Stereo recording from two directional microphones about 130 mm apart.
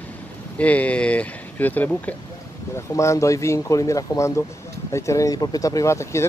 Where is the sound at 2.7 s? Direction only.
20° left (ahead or behind).